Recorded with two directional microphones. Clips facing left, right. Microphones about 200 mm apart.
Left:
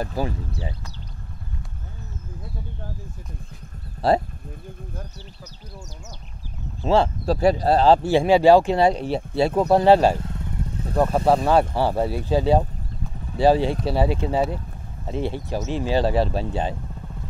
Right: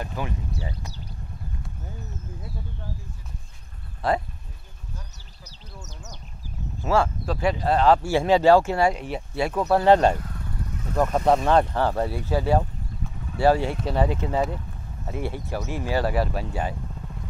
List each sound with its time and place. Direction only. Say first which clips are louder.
0.0 s speech: left 5 dB; 35° left (ahead or behind)
4.0 s a sound: left 5 dB; 40° left (ahead or behind)
6.8 s speech: left 3 dB; 25° left (ahead or behind)
7.3 s speech: left 4 dB; 35° left (ahead or behind)
8.1 s speech: left 3 dB; 15° left (ahead or behind)
8.9 s speech: left 6 dB; 30° left (ahead or behind)
9.8 s speech: left 1 dB; 10° left (ahead or behind)
10.1 s motorcycle: left 4 dB; 25° left (ahead or behind)
11.4 s speech: left 1 dB; 10° left (ahead or behind)
15.0 s speech: left 4 dB; 25° left (ahead or behind)